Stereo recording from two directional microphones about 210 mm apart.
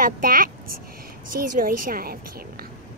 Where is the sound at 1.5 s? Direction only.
40° right (ahead or behind).